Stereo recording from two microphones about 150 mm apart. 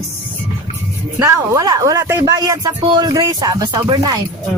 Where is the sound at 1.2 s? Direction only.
20° right (ahead or behind).